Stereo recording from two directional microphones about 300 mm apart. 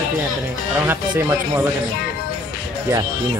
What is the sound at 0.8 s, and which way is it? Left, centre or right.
Speech, centre.